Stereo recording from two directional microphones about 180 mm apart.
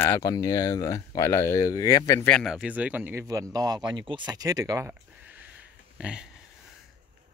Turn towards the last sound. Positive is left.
turn(degrees=-5)  # may be behind; listen again after turning